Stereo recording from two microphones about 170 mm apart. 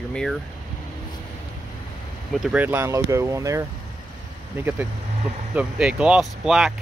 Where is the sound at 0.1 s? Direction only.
5° left (ahead or behind).